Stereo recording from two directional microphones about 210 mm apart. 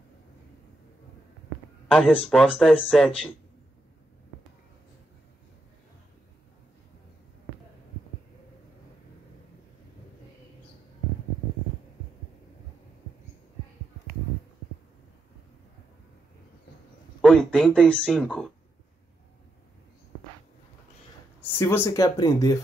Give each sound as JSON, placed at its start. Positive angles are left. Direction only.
{"t": 1.9, "sound": "speech", "side_deg": 0}
{"t": 17.2, "sound": "speech", "side_deg": 5}
{"t": 21.4, "sound": "speech", "side_deg": 10}